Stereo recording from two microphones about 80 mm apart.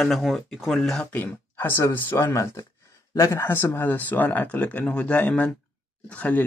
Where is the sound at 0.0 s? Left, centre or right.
Centre.